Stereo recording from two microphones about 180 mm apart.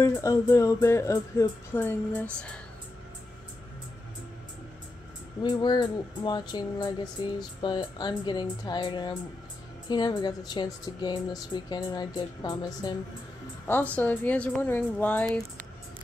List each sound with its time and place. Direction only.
0.0 s speech: 15° left (ahead or behind)
5.4 s speech: 25° left (ahead or behind)
13.7 s speech: 10° left (ahead or behind)